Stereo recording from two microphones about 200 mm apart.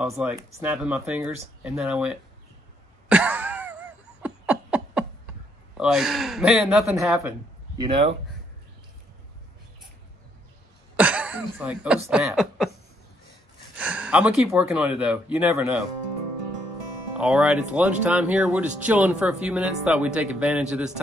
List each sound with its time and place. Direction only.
0.1 s speech: 5° right (ahead or behind)
3.1 s cough: 5° right (ahead or behind)
4.2 s a sound: 5° right (ahead or behind)
5.8 s speech: centre (ahead or behind)
7.2 s speech: 15° right (ahead or behind)
11.0 s a sound: 5° right (ahead or behind)
12.1 s speech: 5° right (ahead or behind)
13.7 s speech: 5° right (ahead or behind)
17.2 s speech: 5° right (ahead or behind)